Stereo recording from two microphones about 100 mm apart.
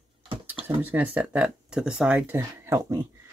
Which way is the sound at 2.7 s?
35° right (ahead or behind).